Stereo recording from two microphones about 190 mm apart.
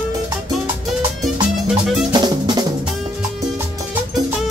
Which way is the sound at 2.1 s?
20° right (ahead or behind).